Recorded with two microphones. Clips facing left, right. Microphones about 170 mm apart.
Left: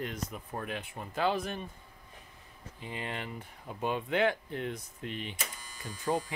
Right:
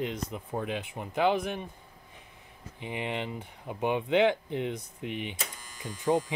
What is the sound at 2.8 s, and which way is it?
Speech, 20° right (ahead or behind).